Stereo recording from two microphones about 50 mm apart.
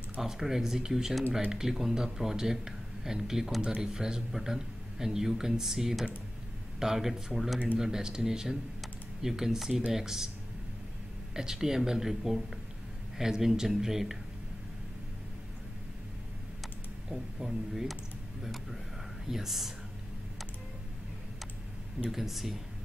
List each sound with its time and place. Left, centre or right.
0.2 s speech: centre
3.6 s speech: centre
11.3 s speech: centre
17.1 s speech: centre
22.1 s speech: centre